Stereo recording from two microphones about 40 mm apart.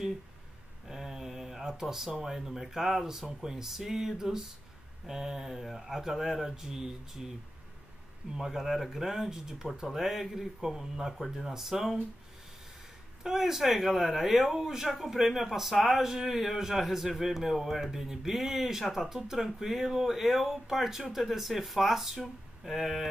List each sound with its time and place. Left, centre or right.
0.8 s a sound: centre
2.2 s a man's voice: centre
8.4 s a man's voice: centre
13.2 s a man's voice: centre
18.0 s a man's voice: centre